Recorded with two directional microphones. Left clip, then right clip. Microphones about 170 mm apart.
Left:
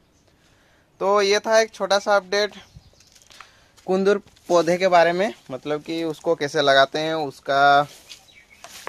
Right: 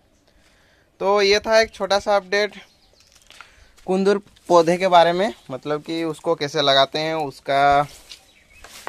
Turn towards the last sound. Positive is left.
turn(degrees=-5)  # may be behind; listen again after turning